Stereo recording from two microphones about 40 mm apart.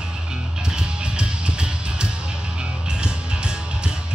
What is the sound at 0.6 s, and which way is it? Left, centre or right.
Music, right.